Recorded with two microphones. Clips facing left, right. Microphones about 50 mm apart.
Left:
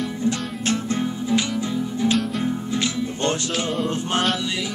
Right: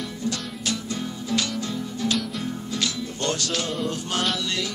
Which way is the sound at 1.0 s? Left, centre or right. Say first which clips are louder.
Left 5 dB; left.